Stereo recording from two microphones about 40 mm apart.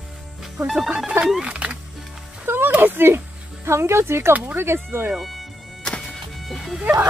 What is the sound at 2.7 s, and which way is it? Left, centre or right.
Speech, right.